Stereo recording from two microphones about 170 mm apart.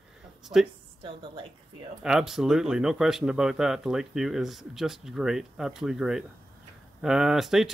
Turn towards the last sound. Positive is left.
turn(degrees=0)  # may be behind; listen again after turning